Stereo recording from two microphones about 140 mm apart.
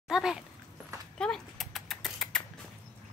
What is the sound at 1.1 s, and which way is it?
Rodents, 5° left (ahead or behind).